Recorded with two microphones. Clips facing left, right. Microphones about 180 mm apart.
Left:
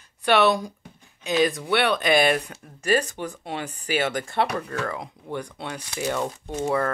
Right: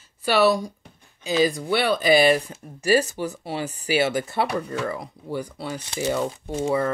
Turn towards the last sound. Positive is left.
turn(degrees=-5)  # may be behind; listen again after turning